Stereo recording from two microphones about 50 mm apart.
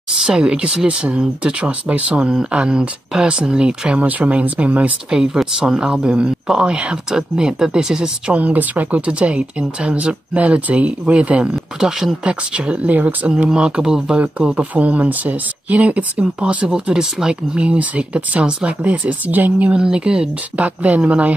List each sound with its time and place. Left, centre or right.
0.2 s speech: centre
5.1 s speech: centre
8.4 s speech: right
11.5 s speech: centre
12.3 s speech: right
13.5 s speech: centre
14.6 s speech: right
19.7 s speech: centre